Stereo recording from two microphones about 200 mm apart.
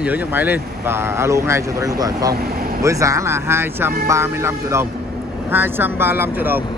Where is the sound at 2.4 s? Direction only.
45° right (ahead or behind).